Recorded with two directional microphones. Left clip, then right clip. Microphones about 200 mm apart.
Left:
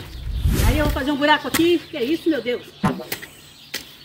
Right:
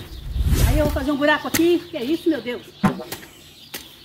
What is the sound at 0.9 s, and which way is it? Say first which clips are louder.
A woman's voice: left 3 dB; centre (ahead or behind).